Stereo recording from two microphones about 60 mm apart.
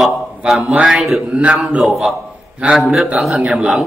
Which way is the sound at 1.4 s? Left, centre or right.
Centre.